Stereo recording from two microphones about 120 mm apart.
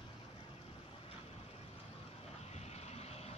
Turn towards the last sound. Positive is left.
turn(degrees=60)  # may be behind; listen again after turning